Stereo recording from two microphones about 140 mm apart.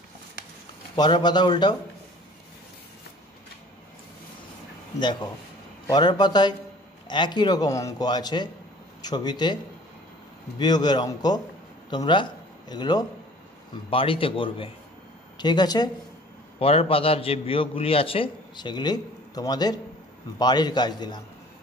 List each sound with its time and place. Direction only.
0.9 s a man's voice: 30° left (ahead or behind)
4.9 s a man's voice: 30° left (ahead or behind)
10.6 s a man's voice: 30° left (ahead or behind)
16.5 s a man's voice: 45° left (ahead or behind)